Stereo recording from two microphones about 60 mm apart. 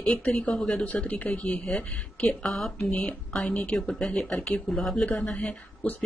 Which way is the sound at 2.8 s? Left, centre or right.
Left.